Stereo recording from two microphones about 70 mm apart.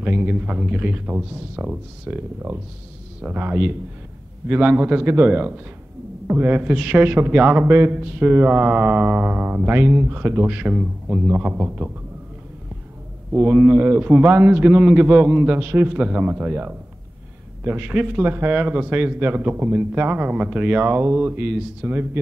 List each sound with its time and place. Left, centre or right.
0.0 s speech: right
5.3 s speech: centre
13.3 s speech: centre
15.6 s speech: right
15.9 s speech: centre
20.8 s speech: right